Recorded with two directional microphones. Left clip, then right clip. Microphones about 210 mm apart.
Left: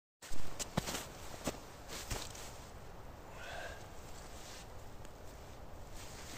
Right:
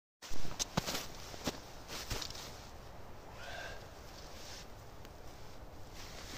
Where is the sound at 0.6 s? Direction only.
30° right (ahead or behind).